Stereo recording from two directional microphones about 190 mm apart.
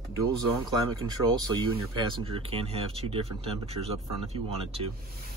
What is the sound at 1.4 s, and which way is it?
Speech, 25° right (ahead or behind).